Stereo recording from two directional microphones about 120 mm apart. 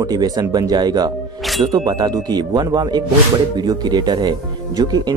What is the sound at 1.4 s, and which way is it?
Speech, centre (ahead or behind).